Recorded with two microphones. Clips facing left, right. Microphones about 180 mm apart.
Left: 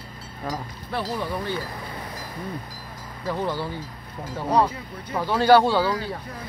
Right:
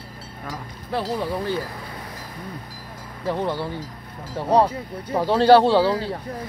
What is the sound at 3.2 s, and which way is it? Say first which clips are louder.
Speech: right 2 dB; 25° right (ahead or behind).